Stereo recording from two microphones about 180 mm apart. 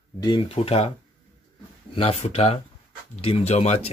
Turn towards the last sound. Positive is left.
turn(degrees=35)  # may be behind; listen again after turning